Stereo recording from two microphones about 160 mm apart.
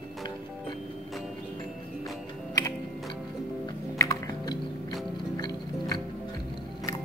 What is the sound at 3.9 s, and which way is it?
Music, 20° left (ahead or behind).